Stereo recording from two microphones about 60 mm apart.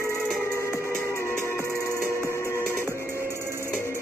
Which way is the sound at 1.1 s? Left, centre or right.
Left.